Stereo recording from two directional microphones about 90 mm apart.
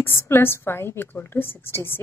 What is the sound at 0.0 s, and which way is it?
Speech, 25° left (ahead or behind).